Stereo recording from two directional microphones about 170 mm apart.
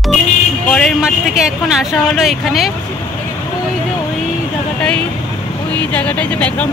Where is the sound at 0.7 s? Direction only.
Centre (ahead or behind).